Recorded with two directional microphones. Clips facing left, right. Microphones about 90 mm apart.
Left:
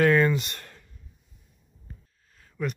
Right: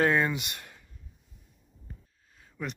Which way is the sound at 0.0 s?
15° right (ahead or behind).